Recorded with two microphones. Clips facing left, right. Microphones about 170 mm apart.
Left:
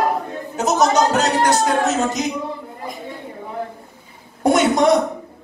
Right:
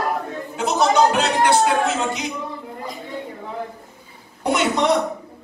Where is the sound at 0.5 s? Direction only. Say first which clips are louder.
Left 2 dB; 40° left (ahead or behind).